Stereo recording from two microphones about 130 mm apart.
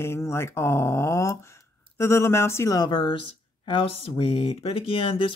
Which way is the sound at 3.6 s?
45° left (ahead or behind).